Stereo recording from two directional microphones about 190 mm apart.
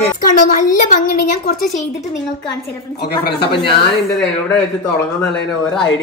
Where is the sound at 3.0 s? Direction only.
60° left (ahead or behind).